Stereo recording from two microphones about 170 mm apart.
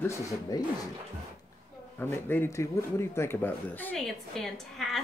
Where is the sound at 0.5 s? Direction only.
25° left (ahead or behind).